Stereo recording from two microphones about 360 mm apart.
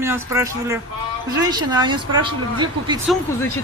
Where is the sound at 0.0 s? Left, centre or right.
Centre.